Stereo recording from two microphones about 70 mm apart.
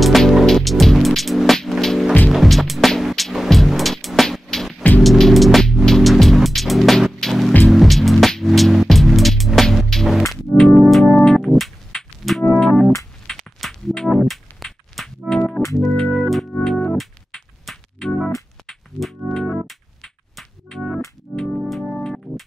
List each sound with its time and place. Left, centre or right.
0.0 s music: centre
13.3 s a sound: centre
13.9 s music: centre
15.8 s organ: centre
16.9 s music: centre
21.3 s music: right
21.6 s music: centre